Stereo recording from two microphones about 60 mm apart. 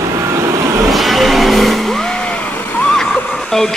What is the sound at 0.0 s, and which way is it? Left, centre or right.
Vehicle, right.